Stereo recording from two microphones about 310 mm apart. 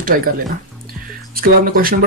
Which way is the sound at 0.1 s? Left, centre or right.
Right.